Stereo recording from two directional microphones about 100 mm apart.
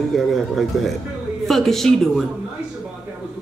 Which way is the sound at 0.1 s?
Centre (ahead or behind).